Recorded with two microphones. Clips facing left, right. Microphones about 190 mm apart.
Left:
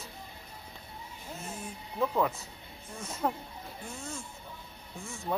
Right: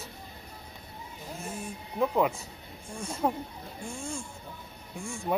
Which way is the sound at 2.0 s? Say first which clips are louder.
Right 3 dB; 15° right (ahead or behind).